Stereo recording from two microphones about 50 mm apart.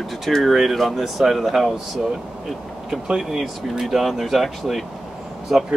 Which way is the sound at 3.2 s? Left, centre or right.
Centre.